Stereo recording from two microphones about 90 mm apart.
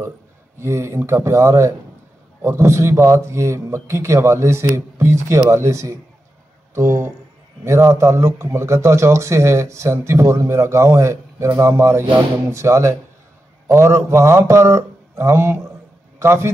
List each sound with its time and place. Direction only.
0.6 s a man's voice: 30° right (ahead or behind)